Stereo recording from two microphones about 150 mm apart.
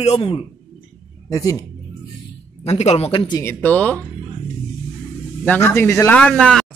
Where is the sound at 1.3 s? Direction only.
20° left (ahead or behind).